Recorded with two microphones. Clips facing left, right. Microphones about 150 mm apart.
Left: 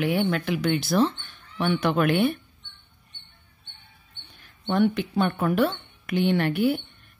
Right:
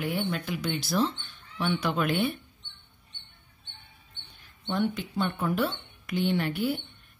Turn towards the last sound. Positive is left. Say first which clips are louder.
# left 5 dB
turn(degrees=60)  # may be behind; listen again after turning